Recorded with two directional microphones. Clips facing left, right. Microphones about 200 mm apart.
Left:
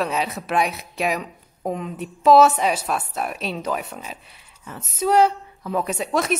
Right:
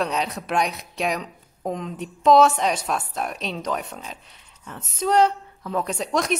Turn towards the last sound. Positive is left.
turn(degrees=5)  # may be behind; listen again after turning